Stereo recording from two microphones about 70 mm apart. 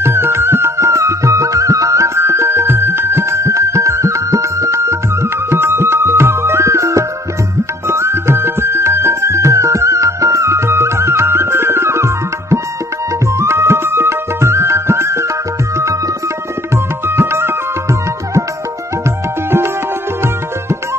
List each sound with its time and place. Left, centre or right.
0.0 s music: right
16.7 s music: right